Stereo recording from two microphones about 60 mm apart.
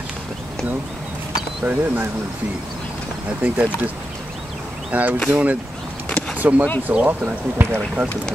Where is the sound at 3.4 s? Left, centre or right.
Right.